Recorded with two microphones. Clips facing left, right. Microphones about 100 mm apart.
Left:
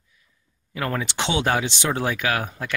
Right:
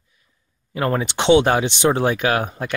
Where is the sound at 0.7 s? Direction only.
30° right (ahead or behind).